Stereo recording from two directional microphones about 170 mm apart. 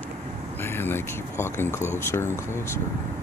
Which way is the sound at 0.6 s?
15° left (ahead or behind).